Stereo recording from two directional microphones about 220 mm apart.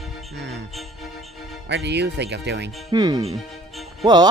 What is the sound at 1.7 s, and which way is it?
Speech, 50° right (ahead or behind).